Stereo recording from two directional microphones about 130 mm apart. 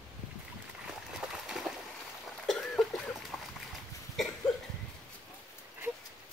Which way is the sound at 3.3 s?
5° left (ahead or behind).